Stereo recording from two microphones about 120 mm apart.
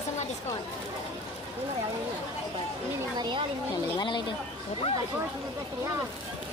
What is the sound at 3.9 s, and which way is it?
Speech, 40° left (ahead or behind).